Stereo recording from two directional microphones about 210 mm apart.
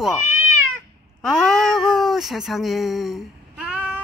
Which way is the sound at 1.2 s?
Centre (ahead or behind).